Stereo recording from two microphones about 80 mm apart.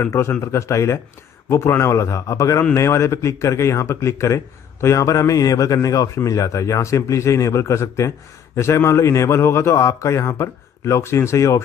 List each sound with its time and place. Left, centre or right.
0.0 s speech: left